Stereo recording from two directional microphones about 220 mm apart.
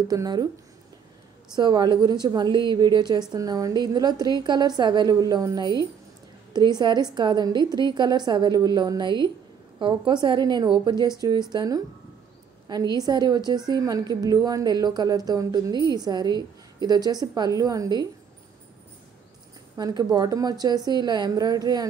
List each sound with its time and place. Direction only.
0.1 s a woman's voice: 15° right (ahead or behind)
1.5 s a woman's voice: 20° right (ahead or behind)
19.8 s a woman's voice: 15° right (ahead or behind)